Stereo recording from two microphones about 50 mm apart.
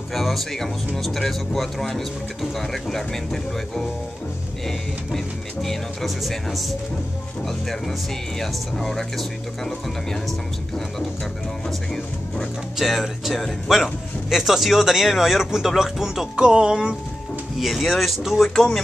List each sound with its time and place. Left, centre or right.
0.1 s speech: centre
8.4 s speech: centre
11.9 s speech: centre
16.3 s speech: centre
17.6 s speech: centre
18.5 s speech: centre